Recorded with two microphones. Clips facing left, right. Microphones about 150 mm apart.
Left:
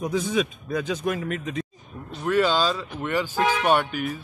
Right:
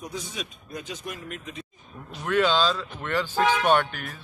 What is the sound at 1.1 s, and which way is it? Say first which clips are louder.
Speech: left 9 dB; 90° left.